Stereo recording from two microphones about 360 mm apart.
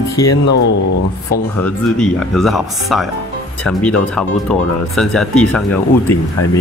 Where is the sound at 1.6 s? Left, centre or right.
Centre.